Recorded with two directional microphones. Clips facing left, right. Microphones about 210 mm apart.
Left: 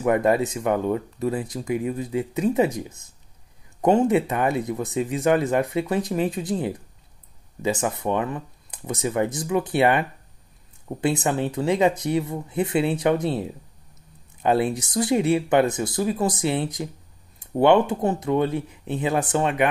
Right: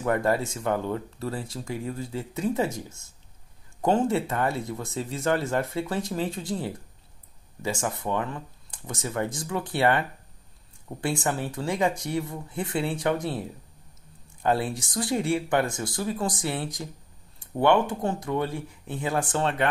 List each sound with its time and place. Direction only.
0.0 s speech: 15° left (ahead or behind)